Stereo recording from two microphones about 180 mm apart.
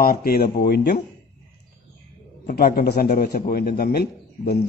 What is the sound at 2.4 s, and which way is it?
A man's voice, 50° left (ahead or behind).